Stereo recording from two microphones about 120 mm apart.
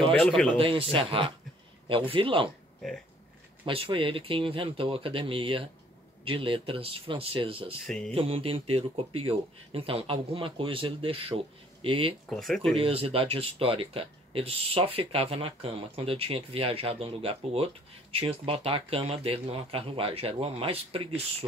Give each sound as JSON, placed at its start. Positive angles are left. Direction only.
{"t": 0.2, "sound": "speech", "side_deg": 5}
{"t": 0.6, "sound": "speech", "side_deg": -50}
{"t": 3.6, "sound": "speech", "side_deg": -45}
{"t": 7.8, "sound": "speech", "side_deg": 5}
{"t": 8.1, "sound": "speech", "side_deg": -55}
{"t": 12.3, "sound": "speech", "side_deg": 0}
{"t": 12.7, "sound": "speech", "side_deg": -50}